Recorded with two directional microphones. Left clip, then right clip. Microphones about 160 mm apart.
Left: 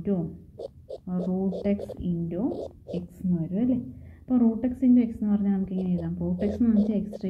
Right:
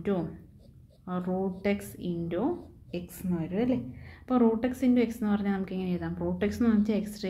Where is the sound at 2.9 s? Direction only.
40° left (ahead or behind).